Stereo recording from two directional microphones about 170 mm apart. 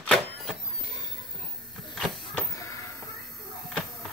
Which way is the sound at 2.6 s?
20° left (ahead or behind).